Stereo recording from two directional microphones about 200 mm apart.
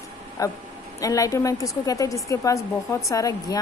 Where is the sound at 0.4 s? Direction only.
15° left (ahead or behind).